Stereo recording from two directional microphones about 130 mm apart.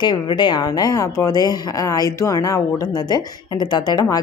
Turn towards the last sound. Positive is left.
turn(degrees=30)  # may be behind; listen again after turning